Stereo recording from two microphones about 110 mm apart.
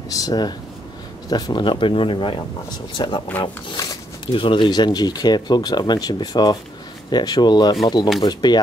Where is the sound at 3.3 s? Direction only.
15° left (ahead or behind).